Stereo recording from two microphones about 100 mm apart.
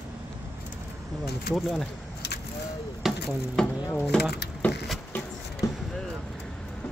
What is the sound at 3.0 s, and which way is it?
Mechanisms, 5° right (ahead or behind).